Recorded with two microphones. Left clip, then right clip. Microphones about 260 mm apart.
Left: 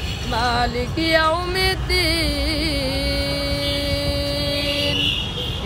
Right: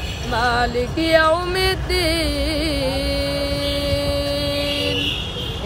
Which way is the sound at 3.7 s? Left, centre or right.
Centre.